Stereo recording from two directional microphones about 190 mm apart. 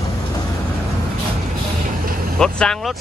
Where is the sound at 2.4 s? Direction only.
5° left (ahead or behind).